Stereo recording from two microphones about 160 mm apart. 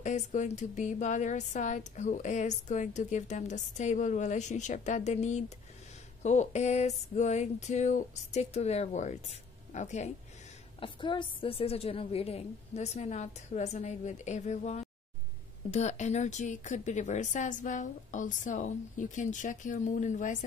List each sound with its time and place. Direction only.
0.0 s speech: 50° left (ahead or behind)
10.8 s speech: 30° left (ahead or behind); by 20.4 s 50° left (ahead or behind)